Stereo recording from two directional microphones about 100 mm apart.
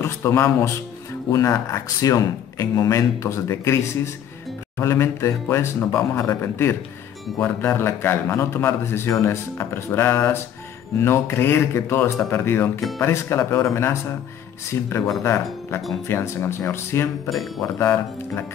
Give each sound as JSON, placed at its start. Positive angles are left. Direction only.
{"t": 0.0, "sound": "a man's voice", "side_deg": 25}
{"t": 17.3, "sound": "speech", "side_deg": 0}
{"t": 17.7, "sound": "speech", "side_deg": 25}